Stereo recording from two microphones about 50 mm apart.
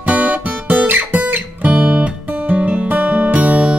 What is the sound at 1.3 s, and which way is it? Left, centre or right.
Music, right.